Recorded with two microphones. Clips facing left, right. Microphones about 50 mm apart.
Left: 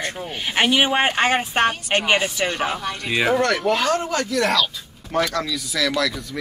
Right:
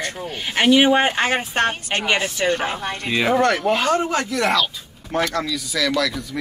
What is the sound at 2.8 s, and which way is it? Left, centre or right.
Speech, right.